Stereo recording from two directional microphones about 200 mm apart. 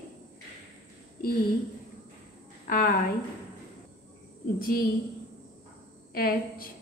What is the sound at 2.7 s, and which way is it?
Speech, 45° left (ahead or behind).